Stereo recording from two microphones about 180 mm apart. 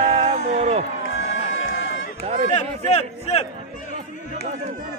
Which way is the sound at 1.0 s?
90° left.